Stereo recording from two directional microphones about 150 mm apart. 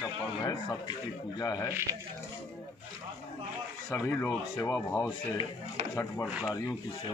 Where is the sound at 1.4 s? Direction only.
25° left (ahead or behind).